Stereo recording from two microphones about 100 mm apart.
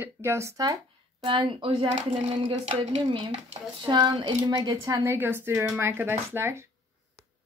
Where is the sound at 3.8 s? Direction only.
50° right (ahead or behind).